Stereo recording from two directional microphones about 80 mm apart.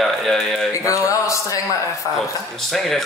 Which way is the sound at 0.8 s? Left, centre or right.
Left.